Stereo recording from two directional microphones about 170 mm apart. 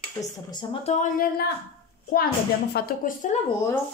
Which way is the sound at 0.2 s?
25° left (ahead or behind).